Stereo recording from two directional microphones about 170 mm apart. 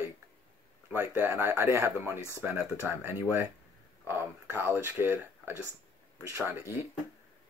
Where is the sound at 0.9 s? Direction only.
15° right (ahead or behind).